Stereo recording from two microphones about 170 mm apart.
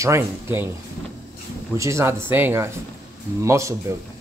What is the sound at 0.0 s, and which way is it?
Speech, 15° right (ahead or behind).